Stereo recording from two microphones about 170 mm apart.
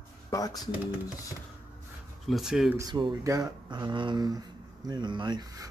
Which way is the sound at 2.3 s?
Centre (ahead or behind).